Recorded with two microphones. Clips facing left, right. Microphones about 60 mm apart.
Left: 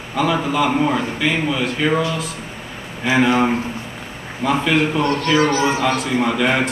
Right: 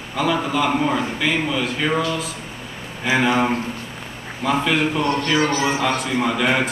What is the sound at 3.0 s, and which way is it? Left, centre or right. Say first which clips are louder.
A man's voice: left 2 dB; centre.